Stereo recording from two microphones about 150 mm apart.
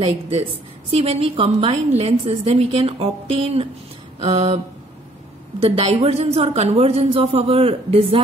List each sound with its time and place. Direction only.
0.9 s a woman's voice: 45° right (ahead or behind)
5.6 s a woman's voice: 40° right (ahead or behind)